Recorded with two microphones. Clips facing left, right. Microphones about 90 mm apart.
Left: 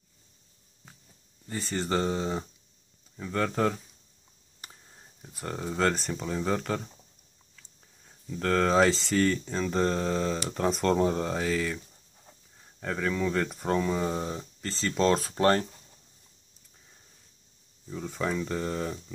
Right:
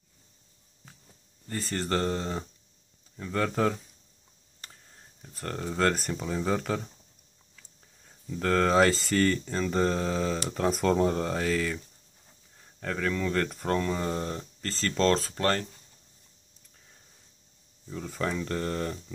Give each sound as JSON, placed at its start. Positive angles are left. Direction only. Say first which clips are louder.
{"t": 1.5, "sound": "speech", "louder": "even", "side_deg": 0}
{"t": 4.6, "sound": "speech", "louder": "left 1 dB", "side_deg": 10}
{"t": 15.2, "sound": "speech", "louder": "left 4 dB", "side_deg": 20}
{"t": 17.8, "sound": "speech", "louder": "left 1 dB", "side_deg": 0}